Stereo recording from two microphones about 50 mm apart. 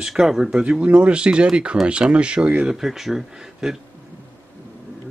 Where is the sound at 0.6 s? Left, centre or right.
Right.